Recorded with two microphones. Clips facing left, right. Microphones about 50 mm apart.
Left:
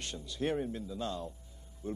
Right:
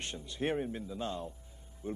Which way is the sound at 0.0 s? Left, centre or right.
Right.